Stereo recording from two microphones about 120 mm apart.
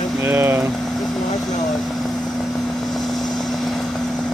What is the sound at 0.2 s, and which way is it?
Vehicle, 20° right (ahead or behind).